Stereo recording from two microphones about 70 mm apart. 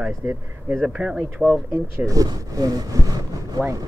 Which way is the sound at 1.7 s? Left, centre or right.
Right.